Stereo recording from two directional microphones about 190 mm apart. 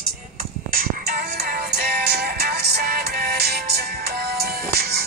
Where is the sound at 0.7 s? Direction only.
50° right (ahead or behind).